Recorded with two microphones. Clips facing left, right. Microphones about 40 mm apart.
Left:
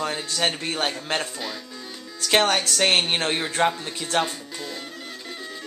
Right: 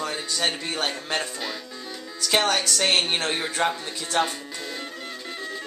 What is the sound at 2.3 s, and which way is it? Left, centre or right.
Speech, left.